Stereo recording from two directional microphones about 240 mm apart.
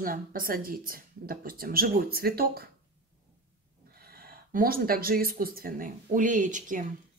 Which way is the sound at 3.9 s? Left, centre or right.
Right.